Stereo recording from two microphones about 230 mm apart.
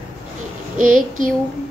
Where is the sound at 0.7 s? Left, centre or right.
Right.